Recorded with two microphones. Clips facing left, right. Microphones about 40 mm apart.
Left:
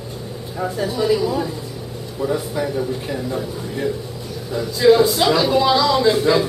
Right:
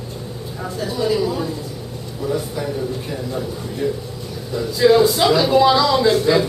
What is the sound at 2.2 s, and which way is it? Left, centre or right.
Speech, centre.